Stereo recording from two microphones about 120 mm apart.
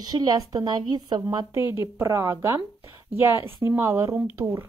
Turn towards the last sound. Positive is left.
turn(degrees=-20)  # may be behind; listen again after turning